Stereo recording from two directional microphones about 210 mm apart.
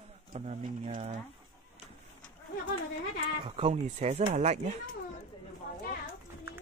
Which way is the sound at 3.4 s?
25° right (ahead or behind).